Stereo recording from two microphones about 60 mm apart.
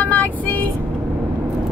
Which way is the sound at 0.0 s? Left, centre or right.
Left.